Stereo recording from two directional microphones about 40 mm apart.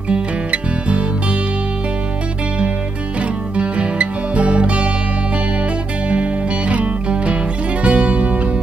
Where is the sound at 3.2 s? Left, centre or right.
Right.